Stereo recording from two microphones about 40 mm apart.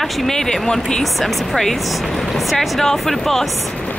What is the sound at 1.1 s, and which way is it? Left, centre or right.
Speech, centre.